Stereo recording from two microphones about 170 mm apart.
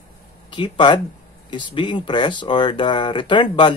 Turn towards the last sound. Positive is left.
turn(degrees=30)  # may be behind; listen again after turning